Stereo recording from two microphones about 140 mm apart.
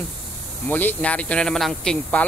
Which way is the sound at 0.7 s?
10° left (ahead or behind).